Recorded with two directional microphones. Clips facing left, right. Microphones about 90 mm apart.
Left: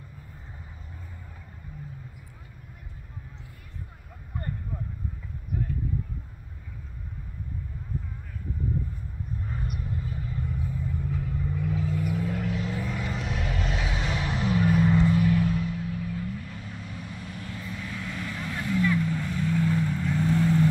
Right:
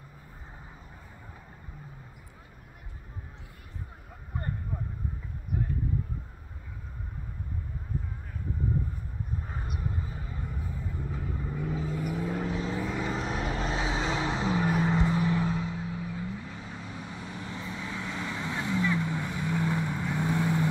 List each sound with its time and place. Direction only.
9.5 s vehicle: 30° right (ahead or behind)